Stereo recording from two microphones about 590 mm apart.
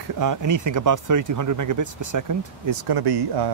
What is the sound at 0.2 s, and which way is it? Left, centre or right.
Speech, right.